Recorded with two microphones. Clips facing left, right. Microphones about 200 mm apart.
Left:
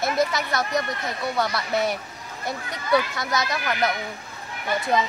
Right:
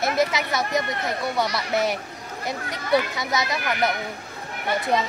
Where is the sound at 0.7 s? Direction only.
20° right (ahead or behind).